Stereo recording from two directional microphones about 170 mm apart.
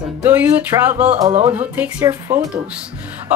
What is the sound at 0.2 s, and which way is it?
Speech, 10° right (ahead or behind).